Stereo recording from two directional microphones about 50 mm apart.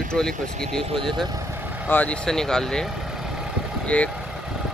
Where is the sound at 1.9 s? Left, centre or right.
Left.